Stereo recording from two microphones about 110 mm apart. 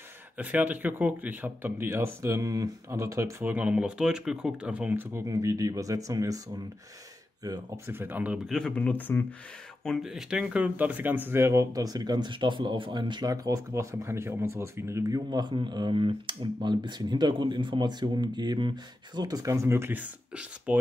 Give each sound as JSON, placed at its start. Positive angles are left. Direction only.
{"t": 0.4, "sound": "speech", "side_deg": -15}
{"t": 7.4, "sound": "speech", "side_deg": -35}
{"t": 7.8, "sound": "speech", "side_deg": -20}
{"t": 8.5, "sound": "speech", "side_deg": 5}
{"t": 9.8, "sound": "speech", "side_deg": -5}